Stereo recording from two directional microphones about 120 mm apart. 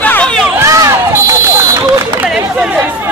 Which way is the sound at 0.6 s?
25° right (ahead or behind).